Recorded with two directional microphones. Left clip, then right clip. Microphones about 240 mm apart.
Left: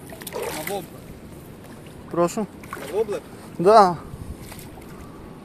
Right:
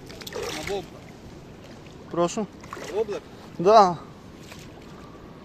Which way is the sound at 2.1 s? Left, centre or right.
Centre.